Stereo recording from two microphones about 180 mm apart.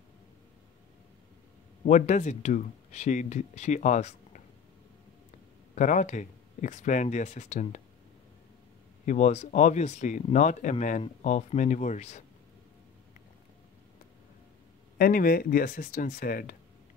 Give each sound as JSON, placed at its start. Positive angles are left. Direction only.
{"t": 1.9, "sound": "speech", "side_deg": 40}
{"t": 5.8, "sound": "speech", "side_deg": 45}
{"t": 9.0, "sound": "speech", "side_deg": 40}
{"t": 15.0, "sound": "speech", "side_deg": 55}